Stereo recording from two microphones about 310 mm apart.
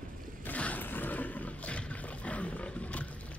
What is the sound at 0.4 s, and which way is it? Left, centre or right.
Roaring cats, centre.